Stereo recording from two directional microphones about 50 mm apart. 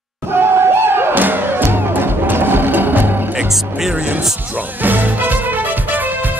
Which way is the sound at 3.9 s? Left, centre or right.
Right.